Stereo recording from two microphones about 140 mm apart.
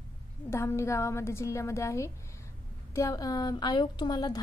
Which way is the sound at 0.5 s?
20° left (ahead or behind).